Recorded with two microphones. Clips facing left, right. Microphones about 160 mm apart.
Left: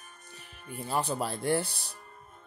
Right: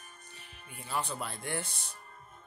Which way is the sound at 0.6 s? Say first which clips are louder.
Left 5 dB; 40° left (ahead or behind).